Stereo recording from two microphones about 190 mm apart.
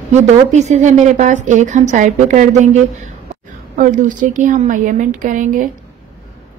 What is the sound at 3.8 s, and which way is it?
Speech, 40° right (ahead or behind).